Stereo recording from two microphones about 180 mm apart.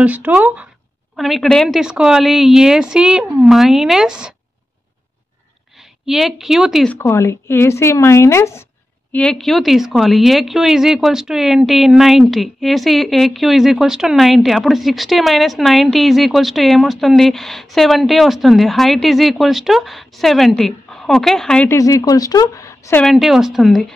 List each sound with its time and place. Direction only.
0.0 s speech: 10° right (ahead or behind)
6.0 s speech: centre (ahead or behind)
7.0 s speech: 15° left (ahead or behind)
9.1 s speech: 5° left (ahead or behind)
21.7 s speech: 20° left (ahead or behind)
23.0 s speech: centre (ahead or behind)